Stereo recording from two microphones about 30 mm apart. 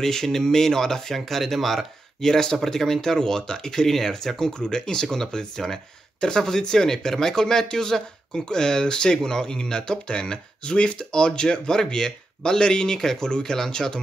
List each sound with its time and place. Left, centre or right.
0.0 s speech: centre
1.1 s speech: centre
2.2 s speech: centre
4.4 s speech: left